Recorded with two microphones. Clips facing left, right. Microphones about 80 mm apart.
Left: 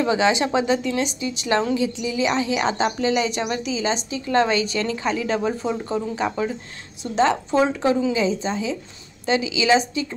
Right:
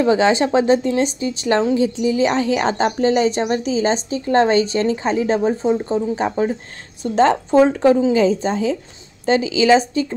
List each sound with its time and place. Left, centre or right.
0.0 s a woman's voice: right